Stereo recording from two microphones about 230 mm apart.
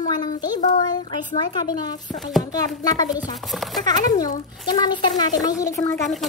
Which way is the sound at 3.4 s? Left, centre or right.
Centre.